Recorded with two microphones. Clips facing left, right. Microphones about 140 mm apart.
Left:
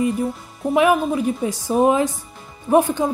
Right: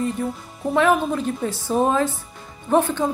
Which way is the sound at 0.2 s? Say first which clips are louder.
Left 2 dB; centre (ahead or behind).